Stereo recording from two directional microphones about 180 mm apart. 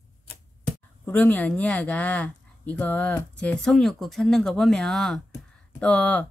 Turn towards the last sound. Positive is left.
turn(degrees=5)  # may be behind; listen again after turning